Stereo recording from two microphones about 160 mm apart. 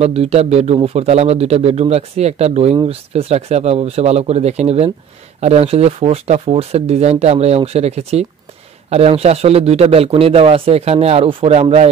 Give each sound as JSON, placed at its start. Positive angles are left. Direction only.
{"t": 0.0, "sound": "a man's voice", "side_deg": -40}